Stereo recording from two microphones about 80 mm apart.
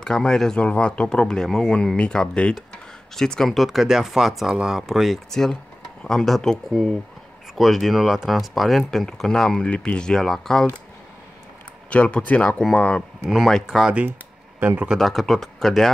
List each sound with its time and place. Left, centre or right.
0.0 s speech: centre
11.9 s speech: centre
13.2 s speech: centre
14.6 s speech: right
15.0 s speech: centre